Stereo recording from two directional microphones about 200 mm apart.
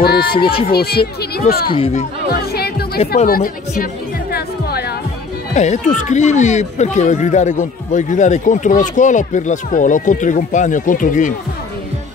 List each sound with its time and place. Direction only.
0.0 s speech: 50° left (ahead or behind)
0.4 s speech: 25° left (ahead or behind)
0.7 s speech: 50° left (ahead or behind)
1.7 s speech: 30° left (ahead or behind)
2.2 s music: 50° left (ahead or behind)
3.2 s speech: 40° left (ahead or behind)
4.3 s music: 50° left (ahead or behind)
5.5 s speech: 35° left (ahead or behind)